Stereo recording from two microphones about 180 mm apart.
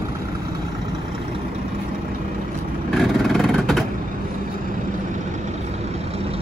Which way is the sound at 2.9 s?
Centre (ahead or behind).